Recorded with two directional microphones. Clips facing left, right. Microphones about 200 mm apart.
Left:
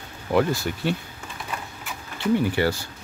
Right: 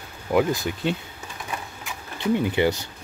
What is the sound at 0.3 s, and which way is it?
Speech, 15° right (ahead or behind).